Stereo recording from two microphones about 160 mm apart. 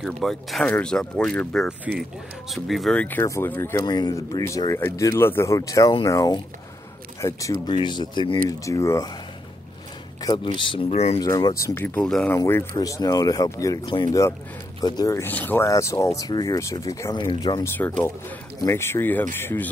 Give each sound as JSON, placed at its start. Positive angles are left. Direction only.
{"t": 0.0, "sound": "speech", "side_deg": 0}
{"t": 3.8, "sound": "speech", "side_deg": 25}
{"t": 10.2, "sound": "speech", "side_deg": 30}
{"t": 11.1, "sound": "speech", "side_deg": 25}
{"t": 12.4, "sound": "speech", "side_deg": 15}
{"t": 17.7, "sound": "speech", "side_deg": 10}